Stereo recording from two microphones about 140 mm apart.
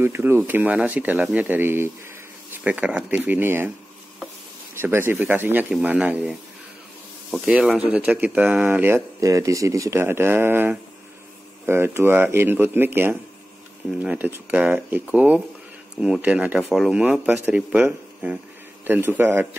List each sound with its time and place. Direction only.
0.0 s speech: 15° right (ahead or behind)
4.7 s speech: 15° right (ahead or behind)